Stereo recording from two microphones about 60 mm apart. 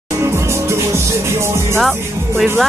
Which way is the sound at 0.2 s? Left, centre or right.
Right.